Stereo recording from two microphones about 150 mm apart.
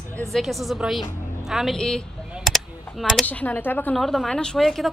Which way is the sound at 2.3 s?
Centre (ahead or behind).